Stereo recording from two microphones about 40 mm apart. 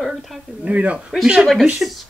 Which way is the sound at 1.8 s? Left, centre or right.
Centre.